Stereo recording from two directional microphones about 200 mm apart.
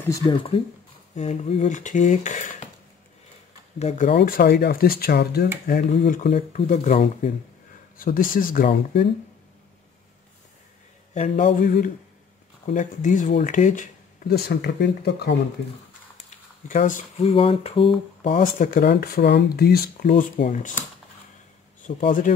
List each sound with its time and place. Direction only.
0.0 s speech: 15° left (ahead or behind); by 2.7 s 35° left (ahead or behind)
4.1 s speech: 55° left (ahead or behind)
5.7 s speech: 40° left (ahead or behind)
8.0 s speech: 45° left (ahead or behind)
11.1 s speech: 35° left (ahead or behind); by 15.3 s 55° left (ahead or behind)
16.3 s speech: 40° left (ahead or behind)
18.3 s speech: 45° left (ahead or behind)
21.8 s speech: 40° left (ahead or behind)